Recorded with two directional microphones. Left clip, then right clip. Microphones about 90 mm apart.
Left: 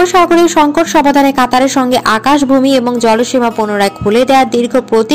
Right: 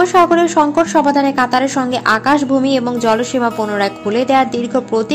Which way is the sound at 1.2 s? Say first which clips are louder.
Left 5 dB; 30° left (ahead or behind).